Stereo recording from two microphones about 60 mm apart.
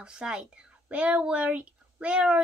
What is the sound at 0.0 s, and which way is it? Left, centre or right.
Speech, centre.